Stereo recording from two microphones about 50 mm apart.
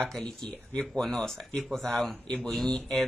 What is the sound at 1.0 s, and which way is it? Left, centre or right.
Speech, centre.